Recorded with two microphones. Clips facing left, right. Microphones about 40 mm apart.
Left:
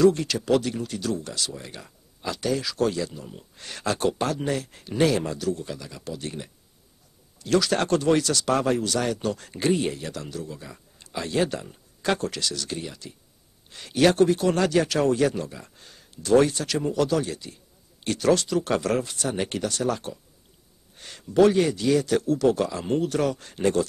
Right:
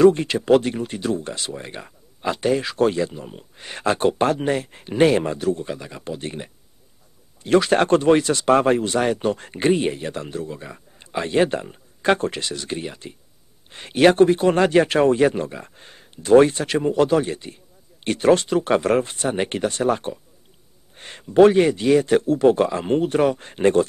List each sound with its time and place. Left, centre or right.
0.0 s speech: right